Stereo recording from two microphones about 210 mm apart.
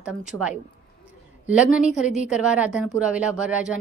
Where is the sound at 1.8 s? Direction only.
35° left (ahead or behind).